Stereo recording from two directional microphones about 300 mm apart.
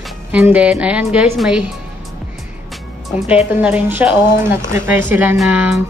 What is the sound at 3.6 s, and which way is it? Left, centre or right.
A woman's voice, centre.